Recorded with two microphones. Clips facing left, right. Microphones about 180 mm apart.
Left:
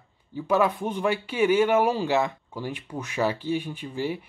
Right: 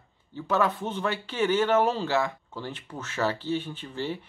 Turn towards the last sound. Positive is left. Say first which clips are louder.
# left 3 dB
turn(degrees=10)  # may be behind; listen again after turning